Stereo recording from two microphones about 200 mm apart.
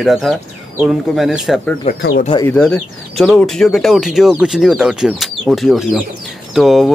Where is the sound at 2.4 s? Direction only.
5° left (ahead or behind).